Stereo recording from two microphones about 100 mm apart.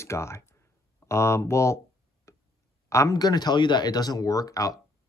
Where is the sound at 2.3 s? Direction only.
30° left (ahead or behind).